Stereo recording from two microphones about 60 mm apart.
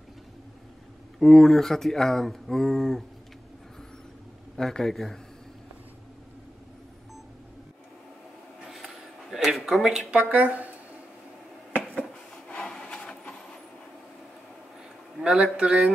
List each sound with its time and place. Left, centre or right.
1.2 s speech: centre
4.6 s speech: centre
8.7 s a sound: centre
10.1 s speech: right
12.0 s printer: centre
15.1 s a man's voice: centre